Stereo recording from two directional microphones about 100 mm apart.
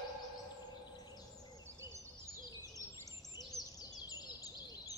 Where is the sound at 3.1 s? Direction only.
40° left (ahead or behind).